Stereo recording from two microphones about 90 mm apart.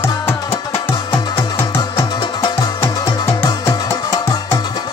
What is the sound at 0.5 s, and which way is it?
Music, 85° left.